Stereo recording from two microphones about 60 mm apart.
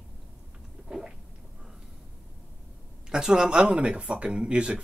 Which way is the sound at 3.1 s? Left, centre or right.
Centre.